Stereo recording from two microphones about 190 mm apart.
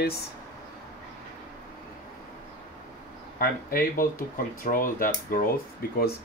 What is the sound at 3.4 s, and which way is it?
Speech, 50° left (ahead or behind).